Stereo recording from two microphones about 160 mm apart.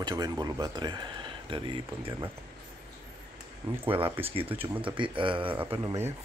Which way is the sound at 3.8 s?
35° right (ahead or behind).